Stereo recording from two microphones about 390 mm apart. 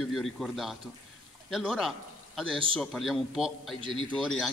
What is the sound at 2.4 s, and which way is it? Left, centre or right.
Speech, centre.